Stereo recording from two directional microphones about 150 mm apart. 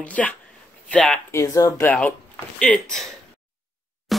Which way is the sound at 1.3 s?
20° left (ahead or behind).